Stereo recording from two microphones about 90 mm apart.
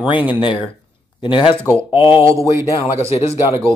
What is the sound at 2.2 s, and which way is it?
Speech, 35° right (ahead or behind).